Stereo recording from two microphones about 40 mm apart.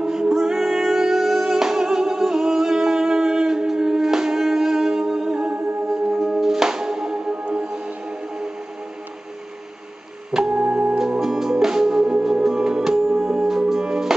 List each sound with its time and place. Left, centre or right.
0.0 s music: centre
6.1 s music: centre
10.5 s music: right
11.0 s music: centre
13.5 s music: centre